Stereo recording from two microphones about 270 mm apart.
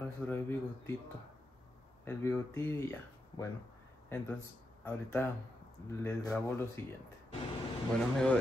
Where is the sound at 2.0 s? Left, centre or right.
Centre.